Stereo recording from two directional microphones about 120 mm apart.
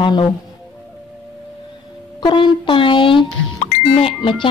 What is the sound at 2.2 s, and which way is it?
A woman's voice, 40° left (ahead or behind).